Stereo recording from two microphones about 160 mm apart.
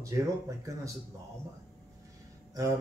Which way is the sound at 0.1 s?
20° right (ahead or behind).